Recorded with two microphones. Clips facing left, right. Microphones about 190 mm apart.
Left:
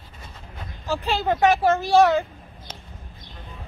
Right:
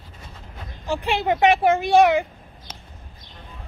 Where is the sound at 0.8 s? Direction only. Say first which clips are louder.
Right 1 dB; 15° right (ahead or behind).